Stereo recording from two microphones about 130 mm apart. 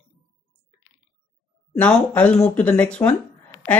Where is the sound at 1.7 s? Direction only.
10° left (ahead or behind).